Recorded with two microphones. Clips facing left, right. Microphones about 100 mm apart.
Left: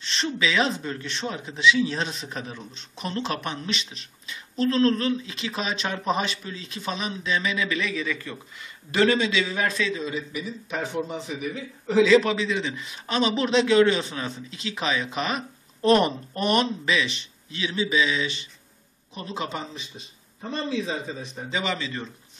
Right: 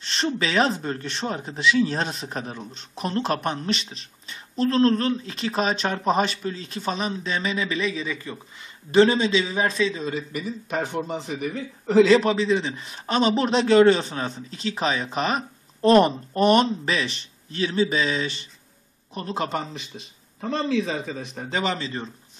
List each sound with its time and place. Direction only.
0.0 s a man's voice: 40° right (ahead or behind)
10.0 s a man's voice: 50° right (ahead or behind)
11.1 s speech: 40° right (ahead or behind)
11.4 s a man's voice: 50° right (ahead or behind)
12.2 s a man's voice: 35° right (ahead or behind)
20.3 s a man's voice: 65° right (ahead or behind)
21.4 s speech: 50° right (ahead or behind); by 22.1 s 35° right (ahead or behind)